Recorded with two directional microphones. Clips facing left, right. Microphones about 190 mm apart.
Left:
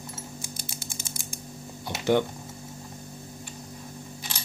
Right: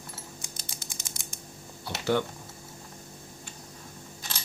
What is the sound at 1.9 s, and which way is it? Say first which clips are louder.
Speech: left 1 dB; 20° left (ahead or behind).